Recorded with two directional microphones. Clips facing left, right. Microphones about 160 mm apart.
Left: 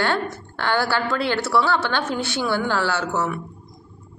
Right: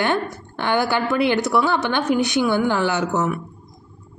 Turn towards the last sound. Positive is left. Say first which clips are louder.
# right 3 dB
turn(degrees=-20)  # may be behind; listen again after turning